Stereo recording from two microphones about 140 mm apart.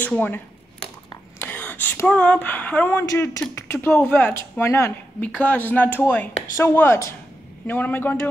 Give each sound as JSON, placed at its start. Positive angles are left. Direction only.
{"t": 0.0, "sound": "speech", "side_deg": 10}
{"t": 1.4, "sound": "speech", "side_deg": 15}